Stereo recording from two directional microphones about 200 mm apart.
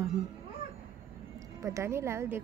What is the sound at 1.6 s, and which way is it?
Speech, 15° right (ahead or behind).